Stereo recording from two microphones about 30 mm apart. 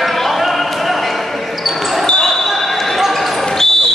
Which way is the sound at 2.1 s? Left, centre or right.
Centre.